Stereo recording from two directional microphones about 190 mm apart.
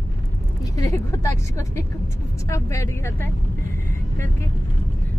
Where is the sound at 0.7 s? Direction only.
15° left (ahead or behind).